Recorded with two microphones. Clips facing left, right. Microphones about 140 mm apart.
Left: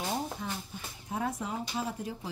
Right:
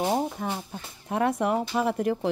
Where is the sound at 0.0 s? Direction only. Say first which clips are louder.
Right 8 dB; 55° right (ahead or behind).